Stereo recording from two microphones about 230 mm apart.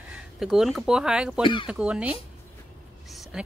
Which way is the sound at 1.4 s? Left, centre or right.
Left.